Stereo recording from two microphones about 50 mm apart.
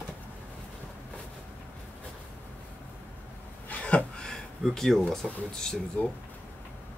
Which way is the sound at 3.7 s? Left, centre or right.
Left.